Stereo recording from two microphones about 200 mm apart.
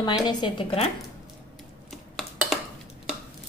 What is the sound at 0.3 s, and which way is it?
Speech, 25° left (ahead or behind).